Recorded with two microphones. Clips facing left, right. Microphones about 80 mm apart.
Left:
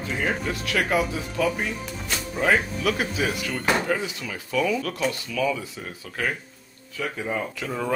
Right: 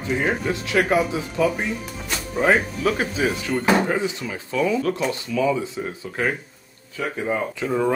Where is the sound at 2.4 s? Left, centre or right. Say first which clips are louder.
Right 3 dB; right.